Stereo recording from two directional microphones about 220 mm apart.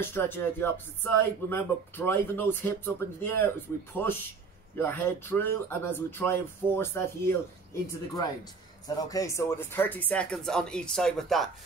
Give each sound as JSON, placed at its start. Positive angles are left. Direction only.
{"t": 0.0, "sound": "speech", "side_deg": 10}
{"t": 8.8, "sound": "speech", "side_deg": 15}